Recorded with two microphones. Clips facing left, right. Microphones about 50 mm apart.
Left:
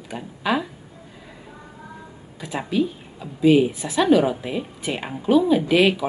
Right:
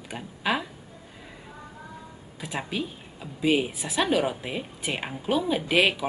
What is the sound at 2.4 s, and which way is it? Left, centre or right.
Speech, centre.